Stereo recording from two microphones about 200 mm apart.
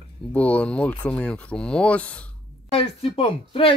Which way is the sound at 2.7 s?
30° left (ahead or behind).